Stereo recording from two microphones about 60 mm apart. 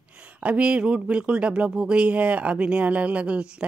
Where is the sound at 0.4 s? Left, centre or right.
Right.